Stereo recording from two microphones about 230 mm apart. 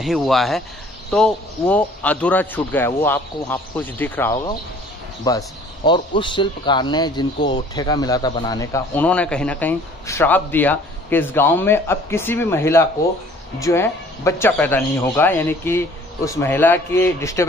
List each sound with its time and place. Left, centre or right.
0.0 s speech: centre